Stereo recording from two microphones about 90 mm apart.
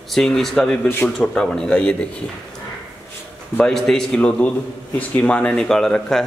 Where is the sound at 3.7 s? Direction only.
5° left (ahead or behind).